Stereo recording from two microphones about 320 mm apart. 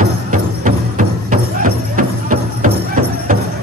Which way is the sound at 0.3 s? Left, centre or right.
Right.